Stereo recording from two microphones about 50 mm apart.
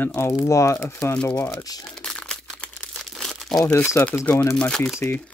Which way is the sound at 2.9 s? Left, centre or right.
Centre.